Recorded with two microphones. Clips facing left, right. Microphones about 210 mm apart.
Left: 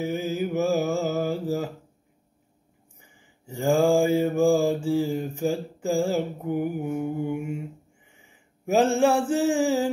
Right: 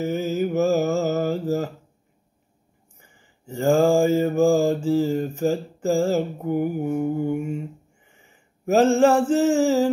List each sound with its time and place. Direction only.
0.0 s mantra: 10° left (ahead or behind)
3.4 s mantra: 10° left (ahead or behind)
6.5 s mantra: 45° right (ahead or behind)
8.6 s mantra: 10° left (ahead or behind)